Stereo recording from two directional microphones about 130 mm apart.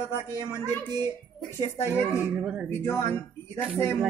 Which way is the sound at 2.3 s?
5° right (ahead or behind).